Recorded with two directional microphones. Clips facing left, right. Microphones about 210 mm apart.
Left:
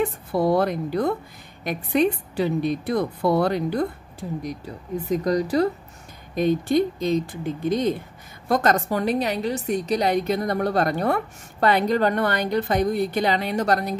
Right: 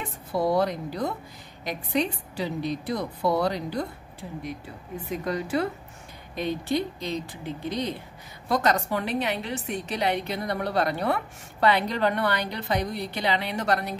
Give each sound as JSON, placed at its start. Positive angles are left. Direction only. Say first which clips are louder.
{"t": 0.0, "sound": "a woman's voice", "louder": "left 5 dB", "side_deg": 55}